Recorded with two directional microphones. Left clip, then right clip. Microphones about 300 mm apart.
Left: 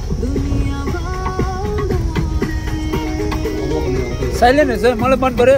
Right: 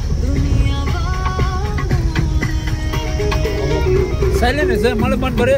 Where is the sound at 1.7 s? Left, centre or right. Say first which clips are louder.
Left 2 dB; left.